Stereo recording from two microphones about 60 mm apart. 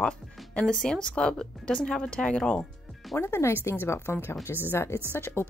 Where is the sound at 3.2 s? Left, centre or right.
Left.